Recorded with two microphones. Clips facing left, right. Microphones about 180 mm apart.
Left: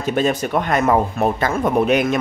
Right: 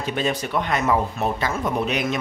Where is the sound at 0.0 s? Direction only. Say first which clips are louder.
Left 6 dB; 45° left (ahead or behind).